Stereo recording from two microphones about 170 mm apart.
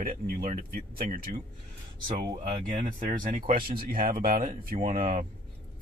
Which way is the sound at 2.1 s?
25° right (ahead or behind).